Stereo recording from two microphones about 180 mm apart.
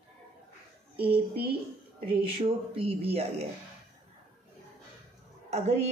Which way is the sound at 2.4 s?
30° right (ahead or behind).